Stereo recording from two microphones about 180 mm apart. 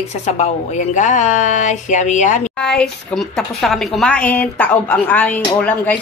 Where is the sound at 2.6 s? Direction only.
5° left (ahead or behind).